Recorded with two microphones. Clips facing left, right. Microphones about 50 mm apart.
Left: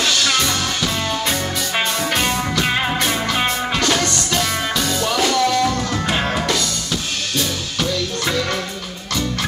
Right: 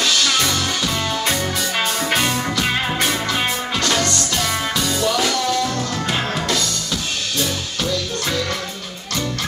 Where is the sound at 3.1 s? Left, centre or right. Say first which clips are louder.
Left 1 dB; left.